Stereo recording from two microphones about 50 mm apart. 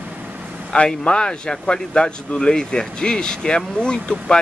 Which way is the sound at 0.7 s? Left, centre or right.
Left.